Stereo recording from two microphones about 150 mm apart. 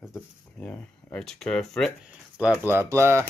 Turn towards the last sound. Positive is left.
turn(degrees=-15)  # may be behind; listen again after turning